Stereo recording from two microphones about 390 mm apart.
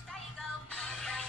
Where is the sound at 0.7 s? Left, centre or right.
Centre.